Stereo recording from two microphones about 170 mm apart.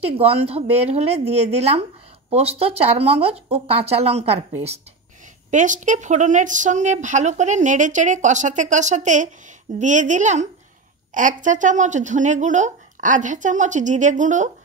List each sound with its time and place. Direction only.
0.0 s speech: 35° right (ahead or behind)
5.5 s speech: 45° right (ahead or behind)